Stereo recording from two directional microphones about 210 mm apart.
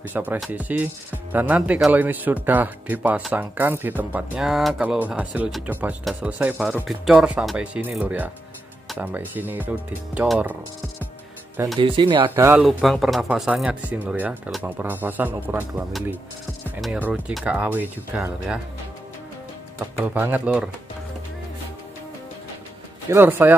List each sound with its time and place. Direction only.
0.1 s speech: 10° right (ahead or behind)
11.8 s speech: 25° right (ahead or behind)
12.4 s speech: 5° right (ahead or behind)
19.8 s speech: 5° right (ahead or behind)
23.0 s speech: 10° right (ahead or behind)